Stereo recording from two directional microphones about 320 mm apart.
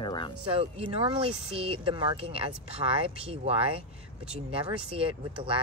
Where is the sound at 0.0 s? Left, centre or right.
Centre.